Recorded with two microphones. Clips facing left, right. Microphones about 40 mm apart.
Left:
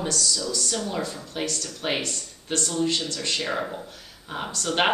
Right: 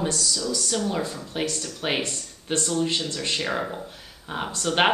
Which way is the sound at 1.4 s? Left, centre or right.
Centre.